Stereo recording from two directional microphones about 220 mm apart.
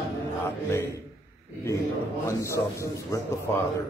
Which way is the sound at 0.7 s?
10° left (ahead or behind).